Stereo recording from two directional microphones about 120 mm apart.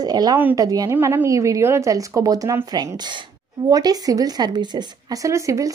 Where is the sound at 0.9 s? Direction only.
20° right (ahead or behind).